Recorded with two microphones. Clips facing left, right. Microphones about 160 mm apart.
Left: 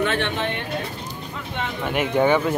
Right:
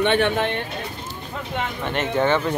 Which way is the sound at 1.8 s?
10° left (ahead or behind).